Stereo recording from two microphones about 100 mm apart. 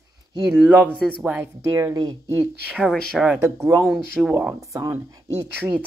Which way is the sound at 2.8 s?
Centre (ahead or behind).